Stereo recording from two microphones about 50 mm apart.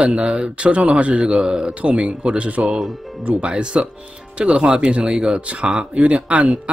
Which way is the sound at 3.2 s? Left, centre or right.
Right.